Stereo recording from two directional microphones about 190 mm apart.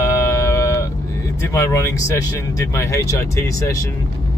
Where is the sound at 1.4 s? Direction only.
15° left (ahead or behind).